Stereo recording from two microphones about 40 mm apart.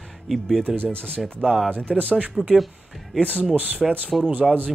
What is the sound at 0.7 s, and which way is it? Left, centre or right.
Speech, centre.